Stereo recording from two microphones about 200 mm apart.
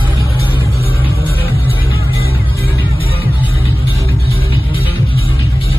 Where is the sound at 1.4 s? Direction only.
10° right (ahead or behind).